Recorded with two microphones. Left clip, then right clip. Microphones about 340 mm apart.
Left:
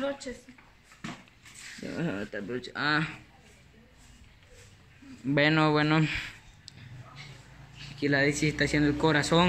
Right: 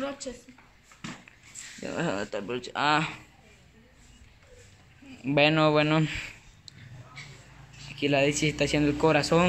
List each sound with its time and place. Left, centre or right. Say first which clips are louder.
0.3 s speech: right 1 dB; centre
1.8 s speech: right 4 dB; right
2.3 s speech: right 3 dB; centre
5.2 s a man's voice: right 2 dB; centre
8.0 s speech: right 2 dB; centre